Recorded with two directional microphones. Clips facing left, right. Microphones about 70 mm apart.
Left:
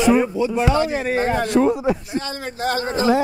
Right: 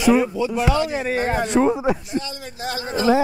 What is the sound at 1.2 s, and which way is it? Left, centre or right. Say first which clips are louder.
Speech: left 1 dB; centre.